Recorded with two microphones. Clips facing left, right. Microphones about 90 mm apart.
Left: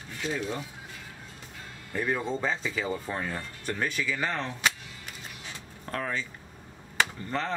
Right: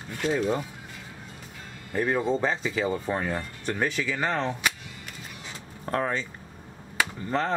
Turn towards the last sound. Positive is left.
turn(degrees=-15)  # may be behind; listen again after turning